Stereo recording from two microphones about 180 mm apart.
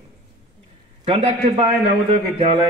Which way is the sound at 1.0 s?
35° right (ahead or behind).